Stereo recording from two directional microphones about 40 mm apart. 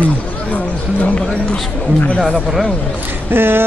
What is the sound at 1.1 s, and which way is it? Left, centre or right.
Speech, left.